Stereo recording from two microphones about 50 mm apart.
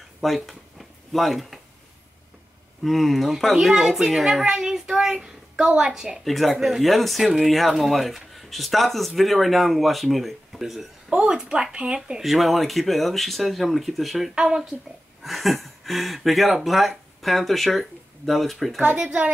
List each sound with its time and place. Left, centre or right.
0.2 s a sound: centre
2.8 s a child's voice: centre
6.2 s speech: centre
12.2 s speech: centre
14.3 s speech: centre
15.2 s speech: centre
18.8 s speech: right